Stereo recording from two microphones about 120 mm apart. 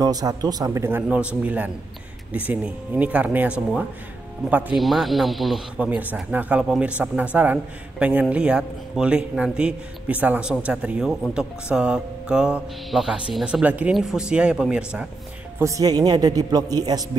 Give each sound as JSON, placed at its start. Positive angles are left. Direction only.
{"t": 0.0, "sound": "a man's voice", "side_deg": -30}
{"t": 4.7, "sound": "speech", "side_deg": 0}
{"t": 5.8, "sound": "a man's voice", "side_deg": -15}
{"t": 15.6, "sound": "a man's voice", "side_deg": -30}